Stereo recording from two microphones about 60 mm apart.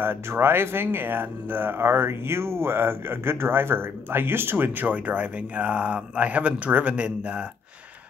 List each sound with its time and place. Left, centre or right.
0.0 s speech: right